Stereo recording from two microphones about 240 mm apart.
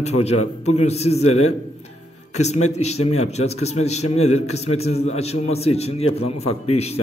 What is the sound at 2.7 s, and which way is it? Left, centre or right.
A man's voice, left.